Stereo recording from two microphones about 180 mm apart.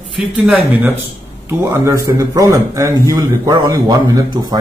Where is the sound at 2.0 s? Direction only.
15° right (ahead or behind).